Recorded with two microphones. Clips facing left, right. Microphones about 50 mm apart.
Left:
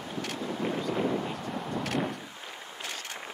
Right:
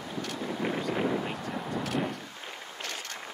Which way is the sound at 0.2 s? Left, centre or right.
Centre.